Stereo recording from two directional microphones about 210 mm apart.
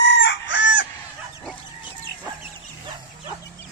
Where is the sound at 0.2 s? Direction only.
60° left (ahead or behind).